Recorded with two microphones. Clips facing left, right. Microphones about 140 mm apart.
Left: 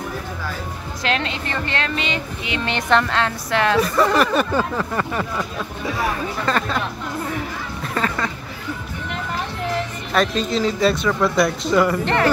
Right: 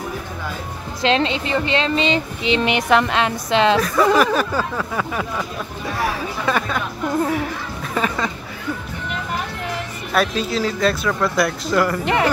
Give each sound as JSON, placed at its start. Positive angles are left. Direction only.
{"t": 1.0, "sound": "a woman's voice", "side_deg": -25}
{"t": 2.0, "sound": "a woman's voice", "side_deg": -30}
{"t": 2.6, "sound": "a woman's voice", "side_deg": -15}
{"t": 3.8, "sound": "speech", "side_deg": 0}
{"t": 7.9, "sound": "a sound", "side_deg": -15}
{"t": 10.1, "sound": "speech", "side_deg": -5}
{"t": 12.0, "sound": "a woman's voice", "side_deg": -10}